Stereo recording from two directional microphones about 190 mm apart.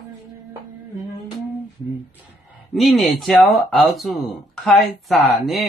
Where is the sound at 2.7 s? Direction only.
Centre (ahead or behind).